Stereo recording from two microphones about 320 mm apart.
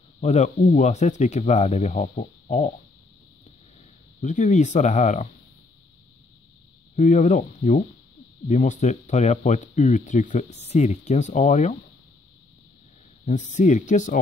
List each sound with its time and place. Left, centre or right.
0.2 s speech: left
4.2 s speech: left
7.0 s speech: left
13.2 s speech: left